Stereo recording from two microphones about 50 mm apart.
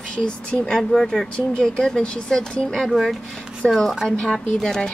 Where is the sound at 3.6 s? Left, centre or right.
Left.